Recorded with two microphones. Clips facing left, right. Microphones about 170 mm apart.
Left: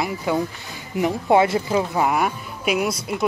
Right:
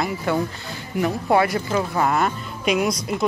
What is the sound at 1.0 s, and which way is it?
Speech, 20° left (ahead or behind).